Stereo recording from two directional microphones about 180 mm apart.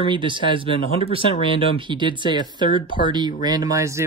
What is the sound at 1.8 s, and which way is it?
Speech, 25° right (ahead or behind).